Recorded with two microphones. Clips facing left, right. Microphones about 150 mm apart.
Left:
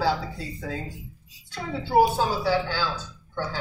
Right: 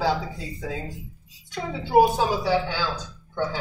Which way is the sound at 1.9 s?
15° right (ahead or behind).